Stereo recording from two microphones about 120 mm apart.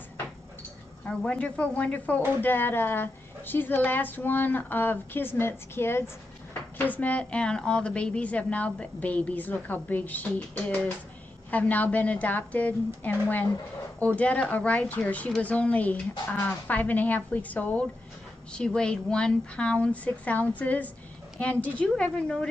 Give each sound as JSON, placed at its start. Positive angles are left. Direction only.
{"t": 1.0, "sound": "a woman's voice", "side_deg": 10}